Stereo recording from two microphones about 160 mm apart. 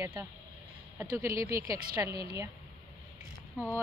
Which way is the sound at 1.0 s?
20° right (ahead or behind).